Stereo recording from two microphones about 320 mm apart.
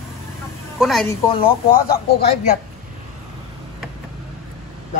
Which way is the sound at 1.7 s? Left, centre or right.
Left.